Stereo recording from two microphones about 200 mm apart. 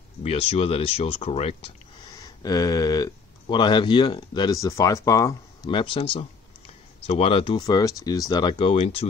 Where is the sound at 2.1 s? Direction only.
20° left (ahead or behind).